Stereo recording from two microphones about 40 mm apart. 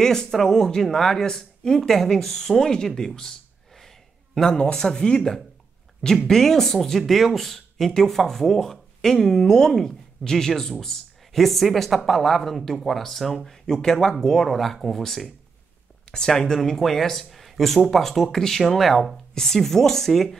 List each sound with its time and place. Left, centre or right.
0.0 s speech: centre
3.2 s a sound: centre
4.4 s speech: left
6.2 s speech: centre
16.1 s speech: centre